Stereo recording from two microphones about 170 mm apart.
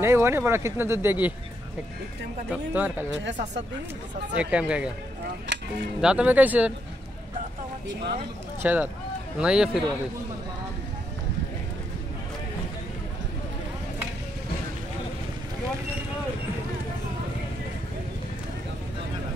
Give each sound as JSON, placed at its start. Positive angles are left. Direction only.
{"t": 0.0, "sound": "speech", "side_deg": -15}
{"t": 2.5, "sound": "speech", "side_deg": -10}
{"t": 4.4, "sound": "speech", "side_deg": -5}
{"t": 5.5, "sound": "music", "side_deg": -90}
{"t": 5.9, "sound": "speech", "side_deg": -5}
{"t": 8.6, "sound": "speech", "side_deg": -10}